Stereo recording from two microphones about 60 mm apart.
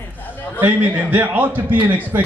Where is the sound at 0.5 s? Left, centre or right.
Right.